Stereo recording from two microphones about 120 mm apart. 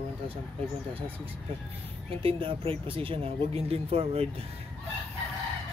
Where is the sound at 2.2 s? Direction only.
50° right (ahead or behind).